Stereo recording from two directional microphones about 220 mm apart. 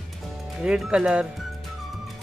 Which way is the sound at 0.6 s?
5° right (ahead or behind).